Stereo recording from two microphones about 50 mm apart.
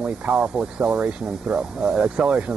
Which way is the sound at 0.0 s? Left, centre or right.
Centre.